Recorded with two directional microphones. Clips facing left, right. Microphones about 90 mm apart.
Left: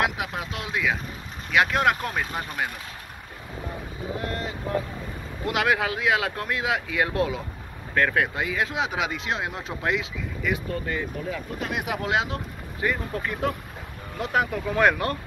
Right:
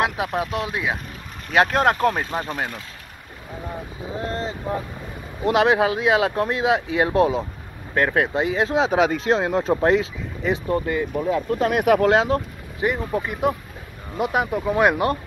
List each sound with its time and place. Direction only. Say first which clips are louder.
0.0 s speech: right 4 dB; 30° right (ahead or behind)
1.5 s speech: right 3 dB; 35° right (ahead or behind)
4.3 s boat: right 4 dB; 30° right (ahead or behind)
5.4 s speech: right 7 dB; 25° right (ahead or behind)
11.2 s speech: right 10 dB; 40° right (ahead or behind)
12.8 s speech: right 4 dB; 20° right (ahead or behind)